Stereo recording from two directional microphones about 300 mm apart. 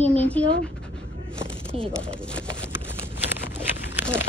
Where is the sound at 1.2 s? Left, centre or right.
Centre.